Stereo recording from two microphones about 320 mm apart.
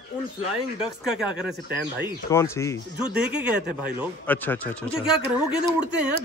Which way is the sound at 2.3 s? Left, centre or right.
Centre.